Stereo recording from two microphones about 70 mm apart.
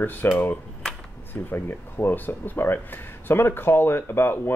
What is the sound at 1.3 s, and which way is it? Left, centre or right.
Speech, left.